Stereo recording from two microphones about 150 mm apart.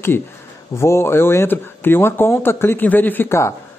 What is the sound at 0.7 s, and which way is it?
Speech, 20° left (ahead or behind).